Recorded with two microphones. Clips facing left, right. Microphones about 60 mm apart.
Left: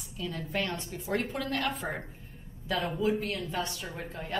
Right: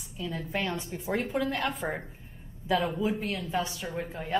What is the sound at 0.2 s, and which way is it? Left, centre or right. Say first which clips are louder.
A woman's voice: right 1 dB; centre.